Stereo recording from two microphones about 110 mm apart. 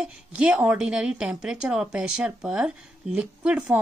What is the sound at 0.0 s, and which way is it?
Speech, 10° right (ahead or behind).